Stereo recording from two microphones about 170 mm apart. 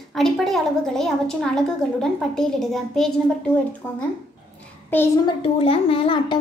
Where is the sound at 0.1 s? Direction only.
Centre (ahead or behind).